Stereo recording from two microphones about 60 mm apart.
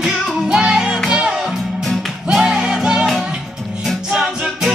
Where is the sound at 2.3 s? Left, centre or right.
Centre.